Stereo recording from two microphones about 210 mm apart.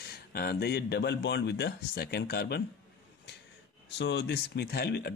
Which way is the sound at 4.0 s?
55° left (ahead or behind).